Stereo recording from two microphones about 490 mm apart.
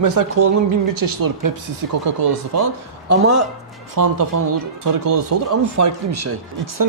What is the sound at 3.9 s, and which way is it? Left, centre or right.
Speech, right.